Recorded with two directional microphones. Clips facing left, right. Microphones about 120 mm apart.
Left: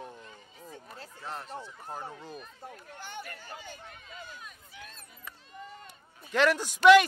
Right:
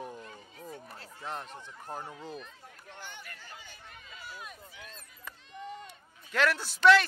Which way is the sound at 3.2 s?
50° left (ahead or behind).